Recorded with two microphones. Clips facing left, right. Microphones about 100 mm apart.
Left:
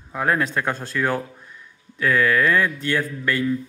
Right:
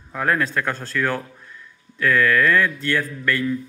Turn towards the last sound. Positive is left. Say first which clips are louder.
# even
turn(degrees=25)  # may be behind; listen again after turning